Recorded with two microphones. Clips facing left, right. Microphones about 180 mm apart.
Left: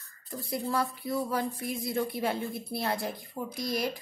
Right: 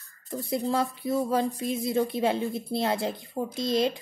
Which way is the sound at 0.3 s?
25° right (ahead or behind).